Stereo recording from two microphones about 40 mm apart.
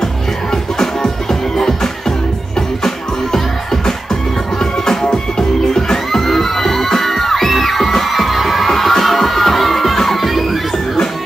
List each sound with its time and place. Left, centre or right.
0.0 s music: centre